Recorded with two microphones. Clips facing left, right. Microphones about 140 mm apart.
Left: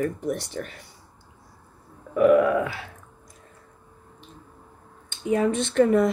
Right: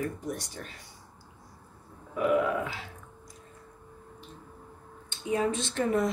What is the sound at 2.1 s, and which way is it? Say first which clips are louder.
Burping: left 8 dB; 60° left (ahead or behind).